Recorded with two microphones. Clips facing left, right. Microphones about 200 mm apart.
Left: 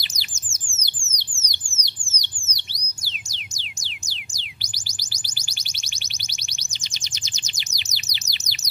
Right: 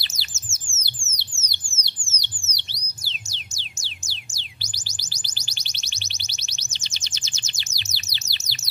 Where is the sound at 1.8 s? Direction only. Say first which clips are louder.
Even; 15° left (ahead or behind).